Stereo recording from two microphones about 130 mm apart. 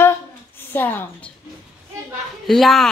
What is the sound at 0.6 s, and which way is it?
Speech, 15° left (ahead or behind).